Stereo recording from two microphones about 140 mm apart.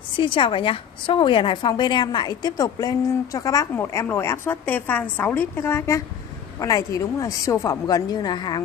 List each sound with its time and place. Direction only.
0.2 s a woman's voice: 35° left (ahead or behind)